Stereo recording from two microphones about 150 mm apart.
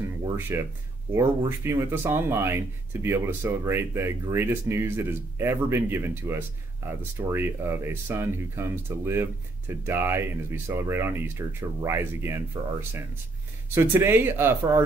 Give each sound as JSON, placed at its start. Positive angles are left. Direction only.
{"t": 0.5, "sound": "speech", "side_deg": -15}
{"t": 13.7, "sound": "speech", "side_deg": -15}